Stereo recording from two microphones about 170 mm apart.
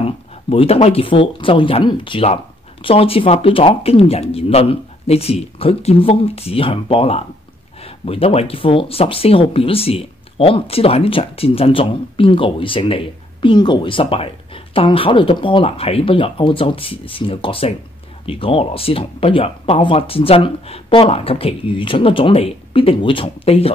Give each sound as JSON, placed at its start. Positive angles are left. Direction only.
{"t": 0.0, "sound": "speech", "side_deg": 35}